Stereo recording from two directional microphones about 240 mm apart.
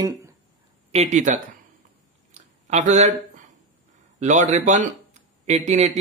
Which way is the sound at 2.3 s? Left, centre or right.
Right.